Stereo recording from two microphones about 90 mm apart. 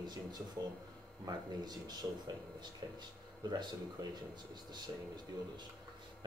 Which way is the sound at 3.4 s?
55° right (ahead or behind).